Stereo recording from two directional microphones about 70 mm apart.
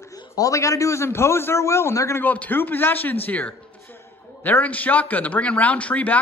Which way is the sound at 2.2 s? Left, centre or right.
Left.